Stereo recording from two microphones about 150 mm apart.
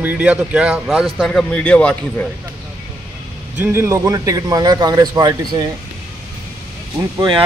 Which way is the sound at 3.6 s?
15° right (ahead or behind).